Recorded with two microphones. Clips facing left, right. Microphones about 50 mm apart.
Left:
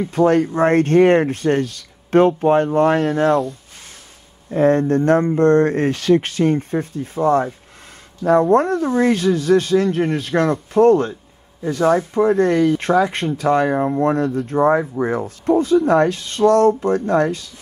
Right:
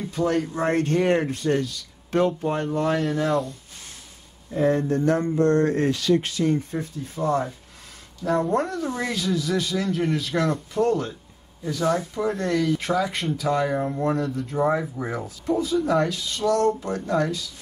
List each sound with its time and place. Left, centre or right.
0.1 s speech: left
4.5 s speech: left
8.7 s speech: left
14.1 s speech: left
15.2 s speech: left